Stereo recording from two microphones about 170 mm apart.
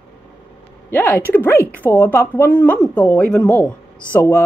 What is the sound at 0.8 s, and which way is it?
A woman's voice, 10° left (ahead or behind).